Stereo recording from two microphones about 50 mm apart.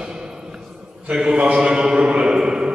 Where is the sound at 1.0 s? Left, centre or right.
Centre.